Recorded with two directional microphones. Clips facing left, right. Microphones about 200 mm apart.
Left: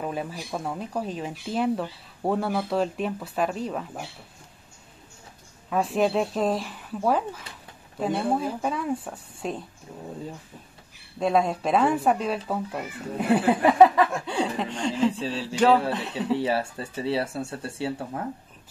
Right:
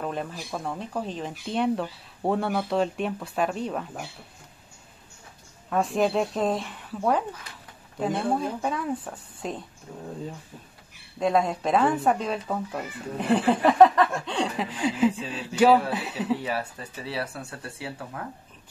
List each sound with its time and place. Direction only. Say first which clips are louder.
0.0 s speech: left 1 dB; 5° left (ahead or behind)
5.7 s speech: even; centre (ahead or behind)
11.1 s speech: left 1 dB; centre (ahead or behind)
14.6 s a sound: right 3 dB; 5° right (ahead or behind)
15.1 s speech: left 4 dB; 30° left (ahead or behind)
15.9 s speech: left 1 dB; 5° right (ahead or behind)
16.3 s speech: left 5 dB; 30° left (ahead or behind)